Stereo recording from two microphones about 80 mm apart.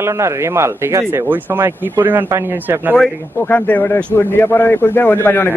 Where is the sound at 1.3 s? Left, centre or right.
Right.